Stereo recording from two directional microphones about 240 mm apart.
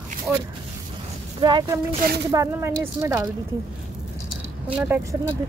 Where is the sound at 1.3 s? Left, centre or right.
Centre.